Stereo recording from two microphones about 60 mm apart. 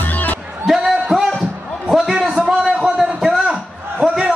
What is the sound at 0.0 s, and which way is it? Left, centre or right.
Music, left.